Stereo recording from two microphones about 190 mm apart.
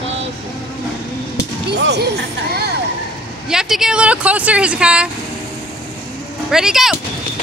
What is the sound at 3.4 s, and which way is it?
Speech, 5° right (ahead or behind).